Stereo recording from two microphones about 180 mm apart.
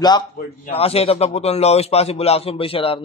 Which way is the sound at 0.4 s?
35° left (ahead or behind).